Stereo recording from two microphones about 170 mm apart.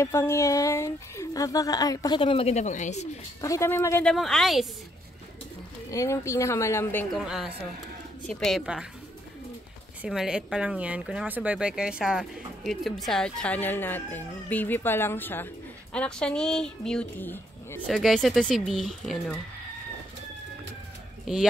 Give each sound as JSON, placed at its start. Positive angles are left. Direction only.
{"t": 0.0, "sound": "speech", "side_deg": 15}
{"t": 3.3, "sound": "speech", "side_deg": 20}
{"t": 4.1, "sound": "speech", "side_deg": 0}
{"t": 5.9, "sound": "speech", "side_deg": 15}
{"t": 7.2, "sound": "speech", "side_deg": -5}
{"t": 10.0, "sound": "speech", "side_deg": -5}
{"t": 17.8, "sound": "speech", "side_deg": 0}
{"t": 21.3, "sound": "speech", "side_deg": -5}